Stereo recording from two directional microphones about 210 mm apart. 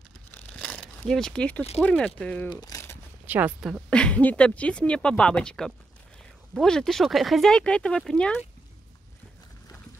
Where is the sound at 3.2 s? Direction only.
5° right (ahead or behind).